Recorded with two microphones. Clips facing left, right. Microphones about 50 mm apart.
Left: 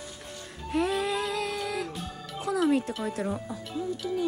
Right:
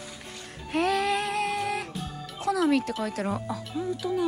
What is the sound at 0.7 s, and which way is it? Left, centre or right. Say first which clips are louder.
Music: right 2 dB; right.